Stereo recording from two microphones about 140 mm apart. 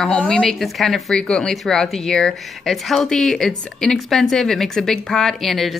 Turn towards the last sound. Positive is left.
turn(degrees=0)  # may be behind; listen again after turning